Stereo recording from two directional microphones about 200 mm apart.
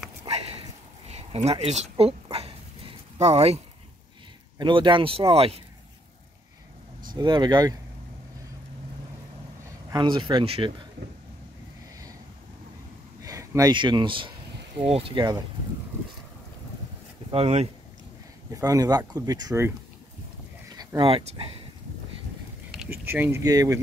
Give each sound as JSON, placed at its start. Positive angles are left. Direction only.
{"t": 0.2, "sound": "a sound", "side_deg": -30}
{"t": 3.2, "sound": "speech", "side_deg": -35}
{"t": 7.2, "sound": "speech", "side_deg": -20}
{"t": 9.8, "sound": "speech", "side_deg": -25}
{"t": 13.2, "sound": "speech", "side_deg": -15}
{"t": 17.3, "sound": "speech", "side_deg": -30}
{"t": 18.5, "sound": "speech", "side_deg": -15}
{"t": 20.7, "sound": "speech", "side_deg": -20}
{"t": 22.7, "sound": "speech", "side_deg": -5}